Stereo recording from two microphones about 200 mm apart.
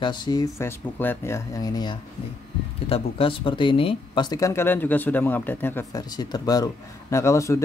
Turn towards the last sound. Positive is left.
turn(degrees=15)  # may be behind; listen again after turning